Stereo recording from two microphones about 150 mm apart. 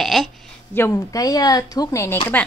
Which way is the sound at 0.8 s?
20° left (ahead or behind).